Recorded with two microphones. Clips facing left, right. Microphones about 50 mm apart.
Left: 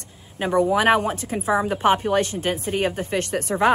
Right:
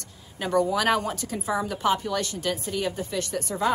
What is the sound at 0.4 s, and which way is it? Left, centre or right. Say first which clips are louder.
Speech: left 4 dB; left.